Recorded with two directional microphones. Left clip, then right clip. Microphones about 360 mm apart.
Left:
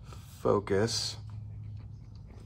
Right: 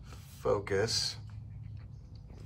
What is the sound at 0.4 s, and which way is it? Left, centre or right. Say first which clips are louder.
Speech: left 3 dB; centre.